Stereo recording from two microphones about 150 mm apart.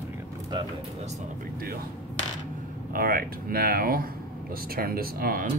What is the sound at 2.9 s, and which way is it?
Speech, 80° right.